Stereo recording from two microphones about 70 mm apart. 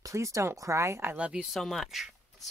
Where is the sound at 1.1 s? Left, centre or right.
Centre.